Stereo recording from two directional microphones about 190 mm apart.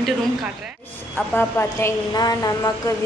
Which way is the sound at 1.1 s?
10° left (ahead or behind).